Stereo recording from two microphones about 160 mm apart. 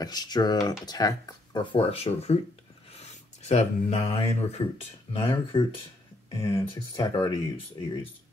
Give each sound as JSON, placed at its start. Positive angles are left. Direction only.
{"t": 0.0, "sound": "speech", "side_deg": 25}